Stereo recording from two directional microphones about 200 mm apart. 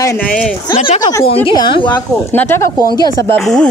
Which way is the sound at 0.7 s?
30° left (ahead or behind).